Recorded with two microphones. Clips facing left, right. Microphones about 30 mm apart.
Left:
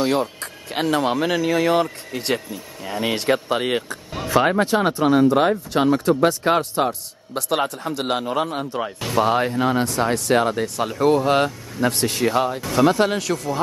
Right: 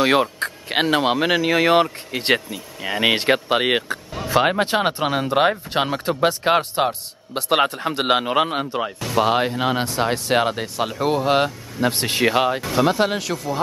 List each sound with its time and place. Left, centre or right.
0.0 s speech: right; by 11.9 s centre
11.9 s speech: right
12.6 s speech: centre